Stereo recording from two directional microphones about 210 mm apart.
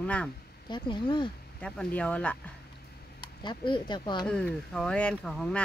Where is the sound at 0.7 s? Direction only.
20° left (ahead or behind).